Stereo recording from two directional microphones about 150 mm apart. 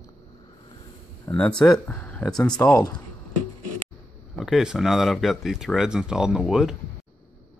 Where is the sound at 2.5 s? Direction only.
25° left (ahead or behind).